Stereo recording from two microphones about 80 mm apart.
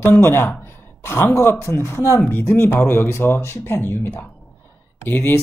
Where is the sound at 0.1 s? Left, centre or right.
Left.